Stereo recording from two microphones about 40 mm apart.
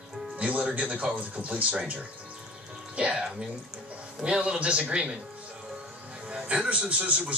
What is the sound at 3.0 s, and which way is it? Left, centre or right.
A man's voice, right.